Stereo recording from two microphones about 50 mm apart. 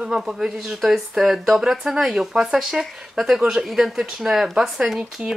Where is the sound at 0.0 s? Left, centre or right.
Centre.